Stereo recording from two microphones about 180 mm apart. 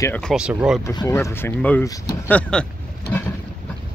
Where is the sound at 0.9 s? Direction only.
15° left (ahead or behind).